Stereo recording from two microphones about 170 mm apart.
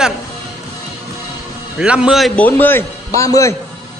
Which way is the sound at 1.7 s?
5° right (ahead or behind).